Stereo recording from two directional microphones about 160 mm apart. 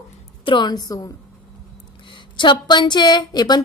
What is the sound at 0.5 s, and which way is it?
Speech, 25° left (ahead or behind).